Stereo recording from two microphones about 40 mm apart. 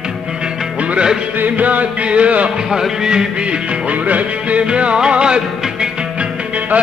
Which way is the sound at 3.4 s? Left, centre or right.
Right.